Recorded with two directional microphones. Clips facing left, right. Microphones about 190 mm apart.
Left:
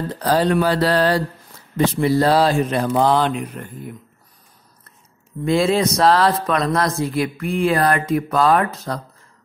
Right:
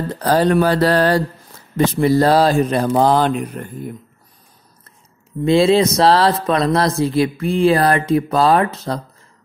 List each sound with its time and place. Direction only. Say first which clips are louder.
0.2 s speech: right 3 dB; 45° right (ahead or behind)
5.4 s speech: right 4 dB; 25° right (ahead or behind)